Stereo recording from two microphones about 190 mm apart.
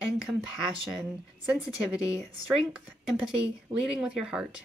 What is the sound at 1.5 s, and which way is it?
Speech, 5° right (ahead or behind).